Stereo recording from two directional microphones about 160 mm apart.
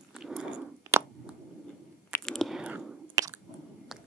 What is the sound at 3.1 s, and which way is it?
Chewing, 20° right (ahead or behind).